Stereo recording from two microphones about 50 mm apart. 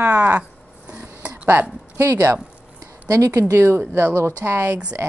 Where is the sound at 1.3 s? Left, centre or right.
Right.